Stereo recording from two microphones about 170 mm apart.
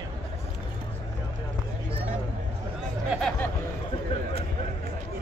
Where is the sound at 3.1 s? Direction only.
5° left (ahead or behind).